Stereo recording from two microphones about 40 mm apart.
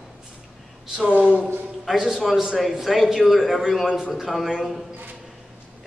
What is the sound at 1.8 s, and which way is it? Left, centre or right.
A man's voice, centre.